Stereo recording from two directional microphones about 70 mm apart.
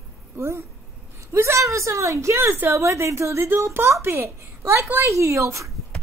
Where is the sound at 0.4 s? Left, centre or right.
Right.